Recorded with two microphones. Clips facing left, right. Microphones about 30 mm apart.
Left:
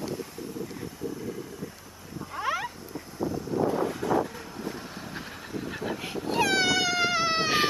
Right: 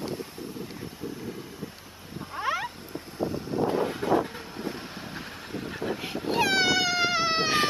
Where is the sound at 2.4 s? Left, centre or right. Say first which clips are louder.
Right 1 dB; centre.